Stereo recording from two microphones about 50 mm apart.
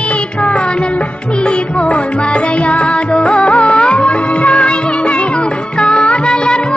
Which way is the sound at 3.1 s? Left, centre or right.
Left.